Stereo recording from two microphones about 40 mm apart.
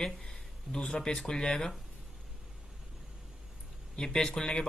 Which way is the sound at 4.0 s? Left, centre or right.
Centre.